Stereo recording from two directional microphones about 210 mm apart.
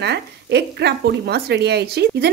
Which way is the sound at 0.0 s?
55° right (ahead or behind).